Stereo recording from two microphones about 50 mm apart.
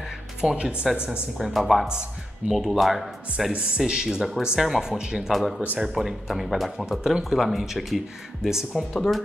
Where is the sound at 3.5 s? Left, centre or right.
Right.